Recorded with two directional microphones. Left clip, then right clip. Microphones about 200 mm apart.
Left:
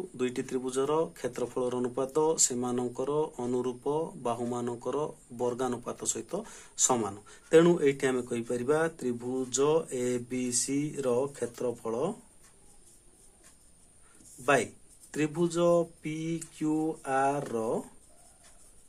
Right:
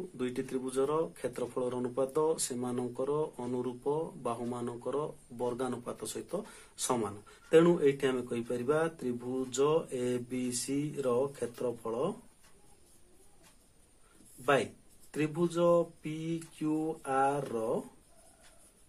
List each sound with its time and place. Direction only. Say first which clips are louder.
0.2 s speech: left 4 dB; 25° left (ahead or behind)
14.4 s speech: left 3 dB; 20° left (ahead or behind)